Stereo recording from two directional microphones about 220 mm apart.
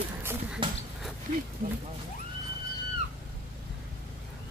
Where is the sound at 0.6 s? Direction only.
20° right (ahead or behind).